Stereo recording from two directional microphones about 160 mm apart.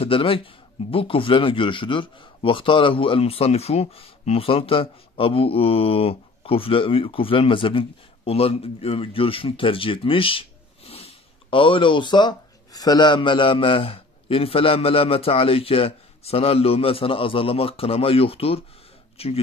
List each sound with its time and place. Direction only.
0.0 s speech: 35° left (ahead or behind)